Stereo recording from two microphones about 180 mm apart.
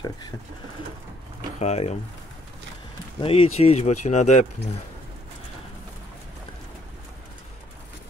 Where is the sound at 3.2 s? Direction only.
30° left (ahead or behind).